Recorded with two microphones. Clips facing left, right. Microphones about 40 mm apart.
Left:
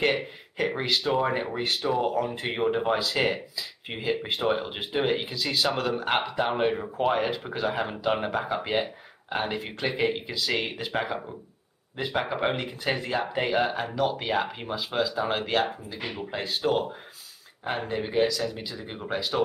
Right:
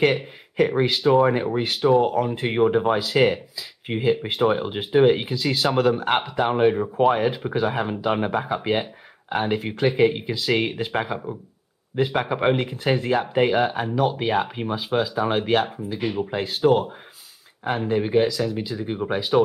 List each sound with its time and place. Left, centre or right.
0.6 s speech: centre
12.3 s speech: centre
18.9 s speech: centre